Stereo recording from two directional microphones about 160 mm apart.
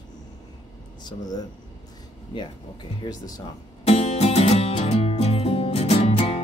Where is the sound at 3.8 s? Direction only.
40° left (ahead or behind).